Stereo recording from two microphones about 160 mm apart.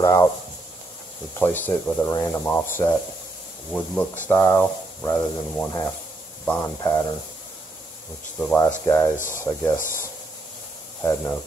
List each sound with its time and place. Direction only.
0.0 s speech: 20° left (ahead or behind)
1.4 s speech: 10° left (ahead or behind)
8.4 s speech: 5° left (ahead or behind)
11.0 s speech: 15° left (ahead or behind)